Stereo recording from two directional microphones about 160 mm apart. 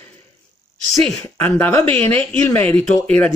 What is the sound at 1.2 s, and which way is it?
Speech, 10° left (ahead or behind).